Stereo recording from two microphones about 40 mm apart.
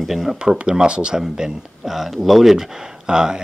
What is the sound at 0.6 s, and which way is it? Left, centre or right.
Speech, right.